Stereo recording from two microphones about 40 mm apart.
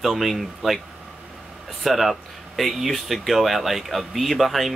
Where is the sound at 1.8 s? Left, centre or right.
Centre.